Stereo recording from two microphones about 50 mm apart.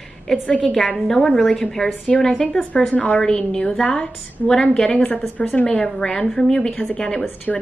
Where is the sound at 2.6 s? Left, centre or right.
Left.